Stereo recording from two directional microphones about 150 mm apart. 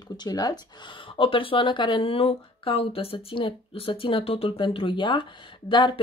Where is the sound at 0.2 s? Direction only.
25° left (ahead or behind).